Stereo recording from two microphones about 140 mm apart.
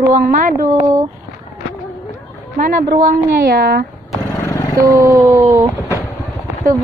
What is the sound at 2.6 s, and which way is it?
A woman's voice, 80° right.